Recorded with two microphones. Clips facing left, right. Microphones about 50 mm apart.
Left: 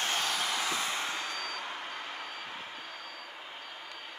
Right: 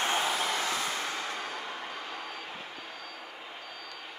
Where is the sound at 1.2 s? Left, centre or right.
Right.